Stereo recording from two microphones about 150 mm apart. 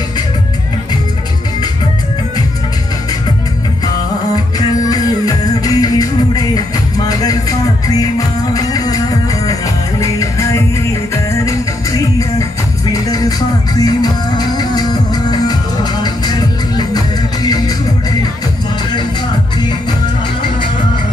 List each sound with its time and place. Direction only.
4.6 s music: 25° left (ahead or behind)
13.7 s music: 25° left (ahead or behind)